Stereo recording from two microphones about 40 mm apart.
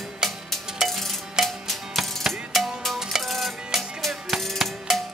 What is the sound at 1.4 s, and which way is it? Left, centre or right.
Music, centre.